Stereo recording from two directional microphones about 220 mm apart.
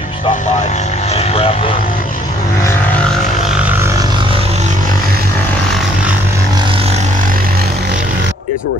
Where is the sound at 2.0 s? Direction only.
40° left (ahead or behind).